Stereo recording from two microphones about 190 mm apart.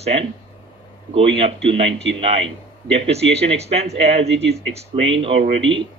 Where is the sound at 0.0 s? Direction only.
35° right (ahead or behind).